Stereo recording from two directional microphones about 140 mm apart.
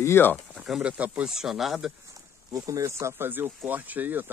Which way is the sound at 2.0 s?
25° right (ahead or behind).